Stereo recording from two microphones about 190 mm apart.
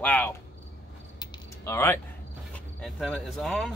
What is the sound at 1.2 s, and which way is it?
Typing, 15° left (ahead or behind).